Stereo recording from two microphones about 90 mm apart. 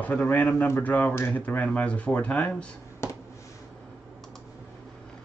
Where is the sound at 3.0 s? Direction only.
30° left (ahead or behind).